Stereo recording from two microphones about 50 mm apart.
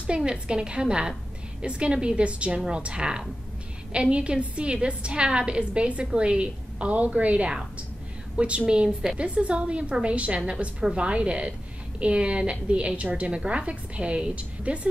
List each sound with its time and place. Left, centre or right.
0.0 s a woman's voice: centre